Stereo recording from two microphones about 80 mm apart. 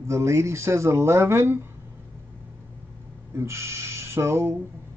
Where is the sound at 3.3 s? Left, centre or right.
Right.